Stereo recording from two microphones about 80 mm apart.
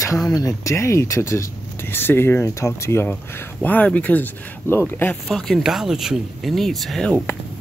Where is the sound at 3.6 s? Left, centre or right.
Centre.